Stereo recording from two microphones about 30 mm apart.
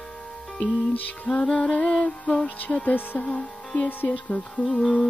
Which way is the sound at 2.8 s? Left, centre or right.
Left.